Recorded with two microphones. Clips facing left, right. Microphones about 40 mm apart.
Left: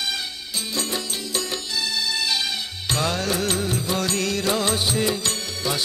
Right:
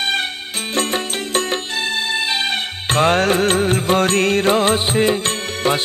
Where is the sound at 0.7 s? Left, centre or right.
Right.